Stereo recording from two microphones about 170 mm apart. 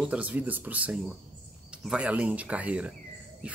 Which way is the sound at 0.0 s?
5° right (ahead or behind).